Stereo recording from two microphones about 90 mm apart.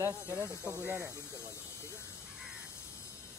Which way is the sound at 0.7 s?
15° right (ahead or behind).